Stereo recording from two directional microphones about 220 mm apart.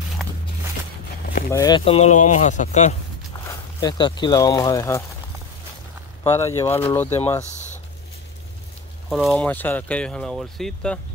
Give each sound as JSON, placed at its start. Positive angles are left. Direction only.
{"t": 0.2, "sound": "a sound", "side_deg": 5}
{"t": 1.5, "sound": "speech", "side_deg": 15}
{"t": 3.4, "sound": "speech", "side_deg": 20}
{"t": 6.2, "sound": "speech", "side_deg": 15}
{"t": 7.4, "sound": "a sound", "side_deg": 30}
{"t": 9.1, "sound": "speech", "side_deg": 0}